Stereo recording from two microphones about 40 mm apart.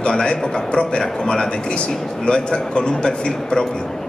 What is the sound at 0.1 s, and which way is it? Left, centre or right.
A man's voice, centre.